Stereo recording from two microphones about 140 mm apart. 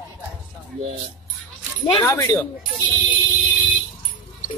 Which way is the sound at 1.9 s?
25° left (ahead or behind).